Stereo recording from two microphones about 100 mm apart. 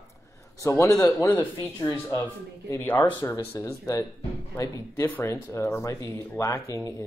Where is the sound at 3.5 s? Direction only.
30° left (ahead or behind).